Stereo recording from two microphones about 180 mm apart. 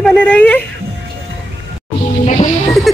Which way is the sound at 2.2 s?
40° left (ahead or behind).